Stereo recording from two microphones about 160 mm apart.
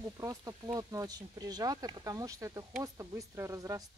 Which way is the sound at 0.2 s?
20° right (ahead or behind).